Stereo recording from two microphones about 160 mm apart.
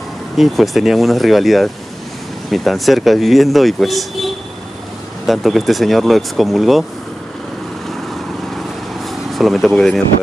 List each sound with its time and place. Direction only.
0.4 s speech: centre (ahead or behind)
9.3 s speech: centre (ahead or behind)